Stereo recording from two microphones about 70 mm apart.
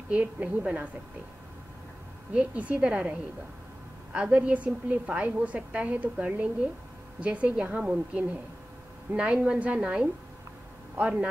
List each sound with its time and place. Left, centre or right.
0.1 s a woman's voice: right
2.3 s a woman's voice: centre